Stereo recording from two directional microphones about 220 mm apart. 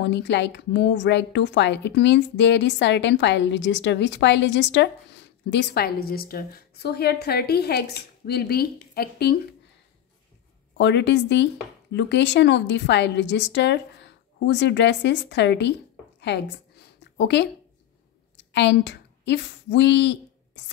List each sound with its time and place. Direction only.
0.0 s a woman's voice: 55° left (ahead or behind)
10.8 s a woman's voice: 50° left (ahead or behind)
16.2 s a sound: 50° left (ahead or behind)
18.3 s a woman's voice: 50° left (ahead or behind)